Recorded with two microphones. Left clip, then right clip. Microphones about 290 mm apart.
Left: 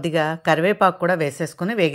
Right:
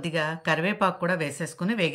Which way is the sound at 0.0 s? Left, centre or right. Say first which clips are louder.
Left 7 dB; centre.